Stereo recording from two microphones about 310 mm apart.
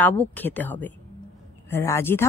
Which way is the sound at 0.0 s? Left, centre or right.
Centre.